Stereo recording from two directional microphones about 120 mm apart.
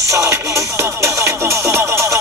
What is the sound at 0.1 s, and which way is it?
Music, 25° right (ahead or behind).